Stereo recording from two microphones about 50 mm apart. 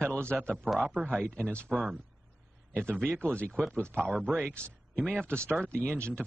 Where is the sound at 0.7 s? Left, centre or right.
Right.